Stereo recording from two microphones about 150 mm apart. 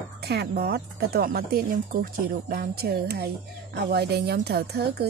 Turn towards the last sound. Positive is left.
turn(degrees=-90)